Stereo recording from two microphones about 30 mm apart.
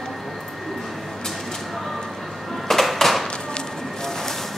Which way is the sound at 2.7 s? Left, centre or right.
Centre.